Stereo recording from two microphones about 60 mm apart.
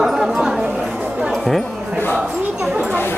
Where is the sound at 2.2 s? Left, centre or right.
Centre.